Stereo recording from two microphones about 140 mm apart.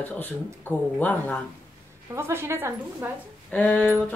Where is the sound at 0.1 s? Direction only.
15° left (ahead or behind).